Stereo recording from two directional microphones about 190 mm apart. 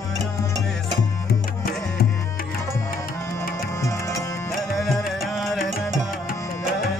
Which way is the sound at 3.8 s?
15° left (ahead or behind).